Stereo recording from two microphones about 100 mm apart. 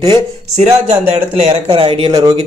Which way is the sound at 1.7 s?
65° right (ahead or behind).